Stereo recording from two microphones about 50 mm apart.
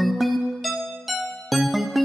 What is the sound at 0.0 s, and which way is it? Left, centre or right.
Music, centre.